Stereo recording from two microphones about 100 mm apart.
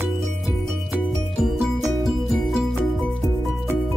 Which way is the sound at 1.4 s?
Centre (ahead or behind).